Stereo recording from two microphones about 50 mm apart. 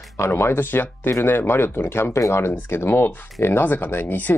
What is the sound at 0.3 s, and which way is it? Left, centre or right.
Speech, left.